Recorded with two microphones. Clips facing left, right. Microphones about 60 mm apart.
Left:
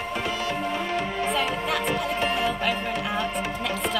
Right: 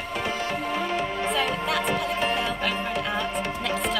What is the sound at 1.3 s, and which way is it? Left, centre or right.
Music, centre.